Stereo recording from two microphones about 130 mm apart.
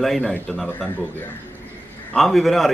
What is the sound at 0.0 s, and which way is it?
Speech, centre (ahead or behind).